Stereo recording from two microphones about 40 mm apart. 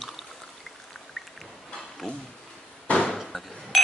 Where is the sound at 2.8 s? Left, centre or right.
Left.